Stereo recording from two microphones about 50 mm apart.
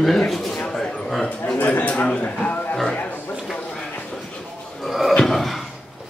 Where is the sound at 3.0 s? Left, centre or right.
Left.